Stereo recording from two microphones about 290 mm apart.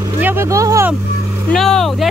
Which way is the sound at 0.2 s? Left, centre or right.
Centre.